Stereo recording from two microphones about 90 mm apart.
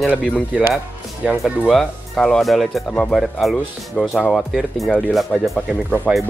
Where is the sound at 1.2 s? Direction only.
10° right (ahead or behind).